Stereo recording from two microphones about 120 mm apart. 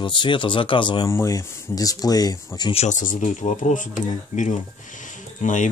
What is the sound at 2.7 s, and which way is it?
Speech, 75° left (ahead or behind).